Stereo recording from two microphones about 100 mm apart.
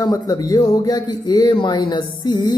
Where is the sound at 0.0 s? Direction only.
35° left (ahead or behind).